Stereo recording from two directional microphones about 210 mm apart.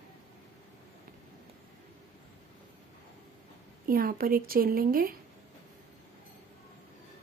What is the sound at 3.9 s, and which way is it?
Speech, 45° right (ahead or behind).